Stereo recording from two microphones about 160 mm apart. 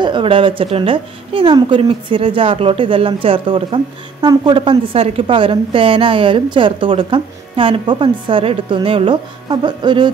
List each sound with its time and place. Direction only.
0.0 s a woman's voice: 30° right (ahead or behind)